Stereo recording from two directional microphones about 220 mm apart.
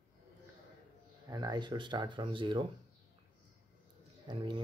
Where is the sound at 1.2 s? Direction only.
20° right (ahead or behind).